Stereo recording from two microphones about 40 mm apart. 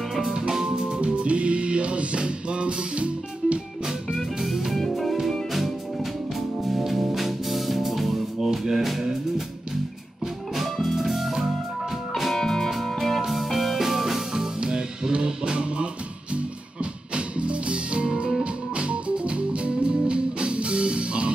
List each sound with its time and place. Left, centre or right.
0.2 s music: centre; by 3.5 s right
4.1 s music: centre
10.2 s music: centre
12.4 s music: centre; by 15.9 s right
17.1 s music: right